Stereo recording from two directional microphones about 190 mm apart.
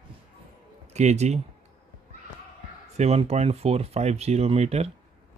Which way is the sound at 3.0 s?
35° right (ahead or behind).